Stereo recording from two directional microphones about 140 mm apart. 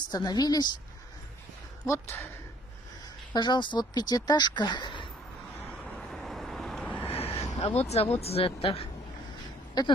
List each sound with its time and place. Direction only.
0.1 s speech: 30° left (ahead or behind)
1.9 s speech: 20° left (ahead or behind)
3.3 s speech: 35° left (ahead or behind)
5.9 s vehicle: centre (ahead or behind)
7.1 s a sound: 45° left (ahead or behind)
7.5 s speech: 45° left (ahead or behind)